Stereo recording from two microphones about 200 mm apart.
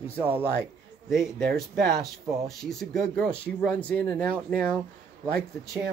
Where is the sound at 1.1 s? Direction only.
Centre (ahead or behind).